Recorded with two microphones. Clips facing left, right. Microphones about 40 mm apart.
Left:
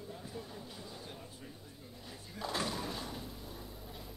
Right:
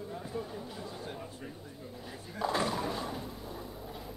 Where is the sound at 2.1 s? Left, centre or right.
Centre.